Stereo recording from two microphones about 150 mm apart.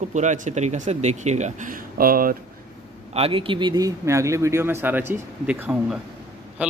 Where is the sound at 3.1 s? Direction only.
40° right (ahead or behind); by 6.0 s 10° right (ahead or behind).